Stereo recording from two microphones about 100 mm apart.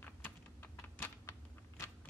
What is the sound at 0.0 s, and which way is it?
Typing, 20° left (ahead or behind).